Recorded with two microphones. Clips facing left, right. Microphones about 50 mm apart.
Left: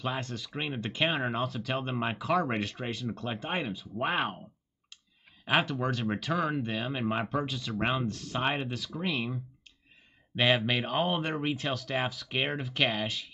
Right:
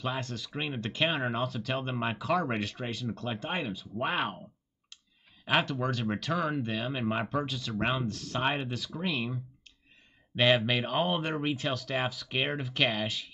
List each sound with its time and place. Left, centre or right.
0.0 s speech: centre
5.4 s speech: centre